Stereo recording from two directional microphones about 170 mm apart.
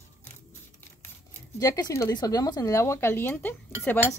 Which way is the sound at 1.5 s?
20° left (ahead or behind).